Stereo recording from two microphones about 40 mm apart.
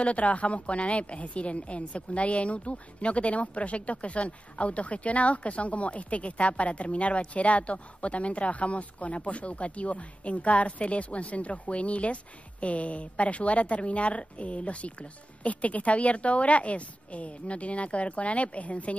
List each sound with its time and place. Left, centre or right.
0.0 s a woman's voice: left